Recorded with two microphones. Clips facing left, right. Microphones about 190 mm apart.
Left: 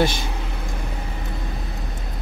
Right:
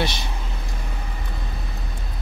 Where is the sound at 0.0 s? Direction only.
50° left (ahead or behind).